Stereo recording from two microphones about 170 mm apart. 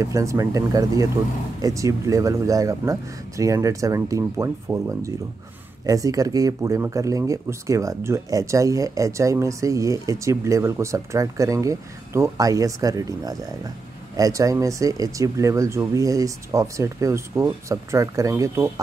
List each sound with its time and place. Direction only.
0.0 s speech: 20° right (ahead or behind)